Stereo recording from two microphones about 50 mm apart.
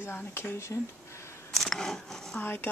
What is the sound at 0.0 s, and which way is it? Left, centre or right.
Speech, left.